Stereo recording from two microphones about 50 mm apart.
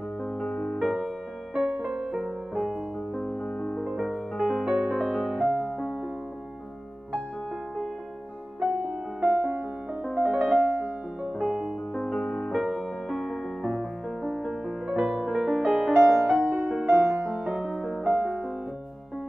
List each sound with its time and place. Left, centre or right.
0.2 s music: centre
0.9 s music: centre
3.2 s music: centre
3.9 s music: centre
4.6 s music: centre
5.0 s music: centre
5.5 s music: centre
9.2 s music: centre
10.0 s piano: centre
11.3 s music: centre
11.9 s music: centre
12.5 s music: centre
13.6 s music: centre